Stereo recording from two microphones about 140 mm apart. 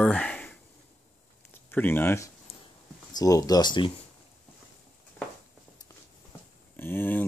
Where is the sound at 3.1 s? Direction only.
25° left (ahead or behind).